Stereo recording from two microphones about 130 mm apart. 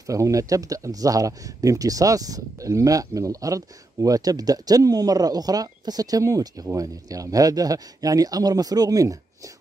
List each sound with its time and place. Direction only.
0.0 s speech: 25° right (ahead or behind)